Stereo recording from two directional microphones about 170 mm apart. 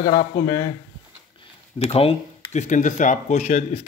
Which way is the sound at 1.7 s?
35° left (ahead or behind).